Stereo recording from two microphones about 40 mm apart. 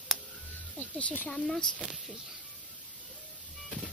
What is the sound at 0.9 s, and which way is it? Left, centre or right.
Speech, left.